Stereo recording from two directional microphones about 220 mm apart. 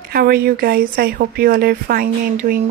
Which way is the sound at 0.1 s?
45° right (ahead or behind).